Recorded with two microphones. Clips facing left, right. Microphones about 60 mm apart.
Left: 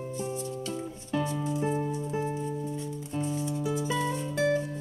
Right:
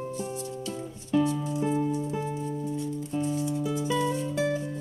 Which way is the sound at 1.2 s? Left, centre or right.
Left.